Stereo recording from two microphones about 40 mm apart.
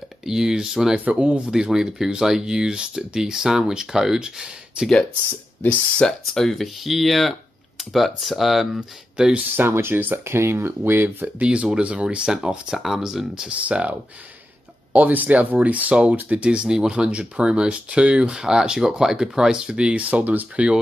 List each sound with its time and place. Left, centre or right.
0.2 s speech: centre
1.1 s speech: right
1.5 s speech: centre
6.0 s speech: centre
6.6 s speech: centre
9.1 s speech: right
9.6 s speech: right
9.9 s speech: right
10.2 s speech: right
10.8 s speech: right
11.3 s speech: right
12.3 s speech: centre
13.5 s speech: right